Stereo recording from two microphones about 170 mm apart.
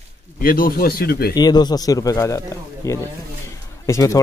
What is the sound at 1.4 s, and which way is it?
Speech, 25° left (ahead or behind).